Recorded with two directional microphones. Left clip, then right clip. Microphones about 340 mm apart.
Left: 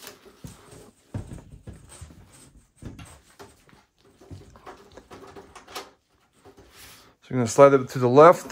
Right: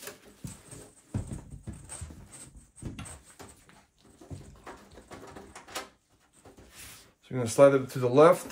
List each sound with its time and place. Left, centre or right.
7.2 s speech: left